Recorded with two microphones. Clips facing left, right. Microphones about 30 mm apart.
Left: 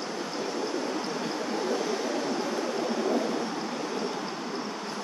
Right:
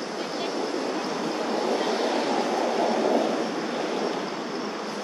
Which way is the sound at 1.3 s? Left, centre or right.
Right.